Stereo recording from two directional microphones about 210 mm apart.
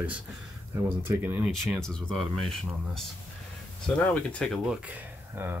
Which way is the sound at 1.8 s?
5° left (ahead or behind).